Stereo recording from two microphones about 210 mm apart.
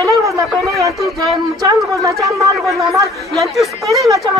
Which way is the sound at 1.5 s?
15° right (ahead or behind).